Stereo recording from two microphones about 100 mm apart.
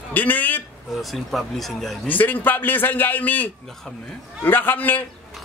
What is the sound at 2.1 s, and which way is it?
A man's voice, 15° left (ahead or behind).